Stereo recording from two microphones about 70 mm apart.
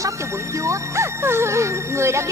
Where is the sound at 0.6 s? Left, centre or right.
Right.